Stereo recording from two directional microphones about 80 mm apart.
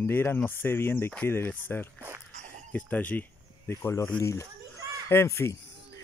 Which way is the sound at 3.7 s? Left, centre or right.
Left.